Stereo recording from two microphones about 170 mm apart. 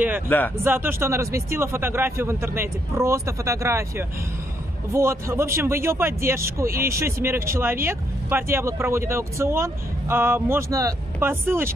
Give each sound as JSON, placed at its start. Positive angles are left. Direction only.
{"t": 0.3, "sound": "speech", "side_deg": 10}
{"t": 0.7, "sound": "speech", "side_deg": -15}
{"t": 4.9, "sound": "speech", "side_deg": -15}